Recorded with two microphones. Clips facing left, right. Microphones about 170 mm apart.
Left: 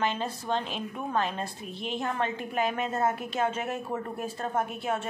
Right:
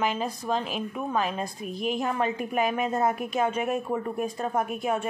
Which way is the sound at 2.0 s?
15° right (ahead or behind).